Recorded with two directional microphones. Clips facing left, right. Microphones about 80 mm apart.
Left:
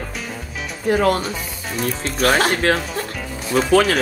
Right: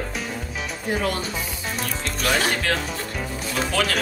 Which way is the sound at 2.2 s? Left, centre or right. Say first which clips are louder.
Left 6 dB; left.